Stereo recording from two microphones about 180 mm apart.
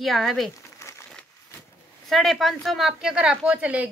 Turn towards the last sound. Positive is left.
turn(degrees=-5)  # may be behind; listen again after turning